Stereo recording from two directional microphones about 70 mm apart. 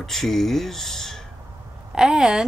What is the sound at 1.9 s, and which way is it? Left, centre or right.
Speech, centre.